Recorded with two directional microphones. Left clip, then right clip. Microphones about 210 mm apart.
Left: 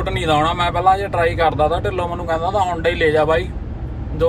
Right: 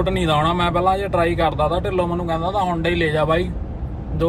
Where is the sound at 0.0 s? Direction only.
10° right (ahead or behind).